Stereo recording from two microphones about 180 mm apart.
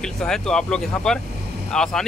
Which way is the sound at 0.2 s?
5° left (ahead or behind).